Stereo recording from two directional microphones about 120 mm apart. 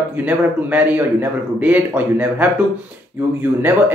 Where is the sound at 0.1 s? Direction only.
15° right (ahead or behind).